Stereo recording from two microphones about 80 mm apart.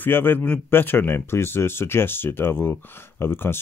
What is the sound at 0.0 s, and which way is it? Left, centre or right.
Speech, left.